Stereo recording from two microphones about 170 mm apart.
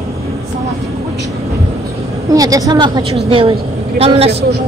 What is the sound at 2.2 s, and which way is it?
A woman's voice, 20° right (ahead or behind).